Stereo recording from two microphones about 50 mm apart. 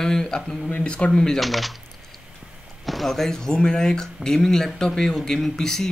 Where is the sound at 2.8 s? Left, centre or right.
Centre.